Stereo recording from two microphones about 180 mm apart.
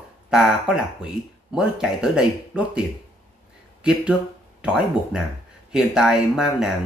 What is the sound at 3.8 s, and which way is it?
Speech, 5° right (ahead or behind).